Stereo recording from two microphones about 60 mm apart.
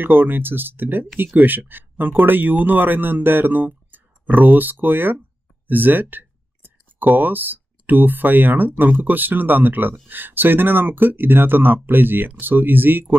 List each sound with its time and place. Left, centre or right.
0.0 s speech: right